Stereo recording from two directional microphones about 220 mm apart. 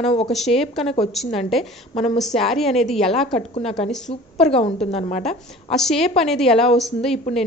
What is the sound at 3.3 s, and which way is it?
A woman's voice, 30° left (ahead or behind).